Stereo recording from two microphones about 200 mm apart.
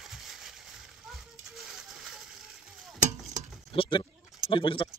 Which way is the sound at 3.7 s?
25° left (ahead or behind).